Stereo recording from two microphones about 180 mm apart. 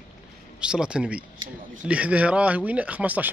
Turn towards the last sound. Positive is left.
turn(degrees=-10)  # may be behind; listen again after turning